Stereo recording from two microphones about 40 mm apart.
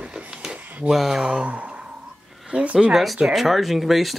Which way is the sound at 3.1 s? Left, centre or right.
Centre.